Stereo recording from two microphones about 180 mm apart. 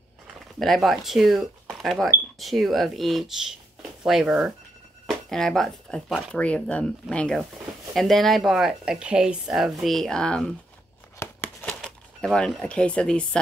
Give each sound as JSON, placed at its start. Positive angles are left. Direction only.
{"t": 0.6, "sound": "speech", "side_deg": 0}
{"t": 11.1, "sound": "a sound", "side_deg": 15}
{"t": 11.8, "sound": "speech", "side_deg": 5}